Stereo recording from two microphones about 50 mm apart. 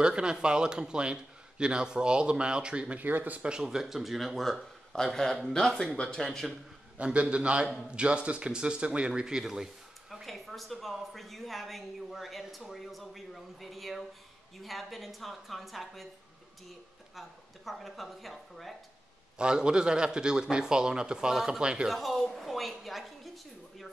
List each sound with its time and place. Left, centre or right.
0.0 s a man's voice: centre
3.0 s speech: right
3.4 s a woman's voice: centre
7.0 s a man's voice: right
10.2 s a woman's voice: centre
17.1 s a woman's voice: centre
19.3 s a man's voice: centre
21.8 s a woman's voice: centre